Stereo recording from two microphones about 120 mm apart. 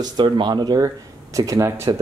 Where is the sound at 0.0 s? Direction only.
40° right (ahead or behind).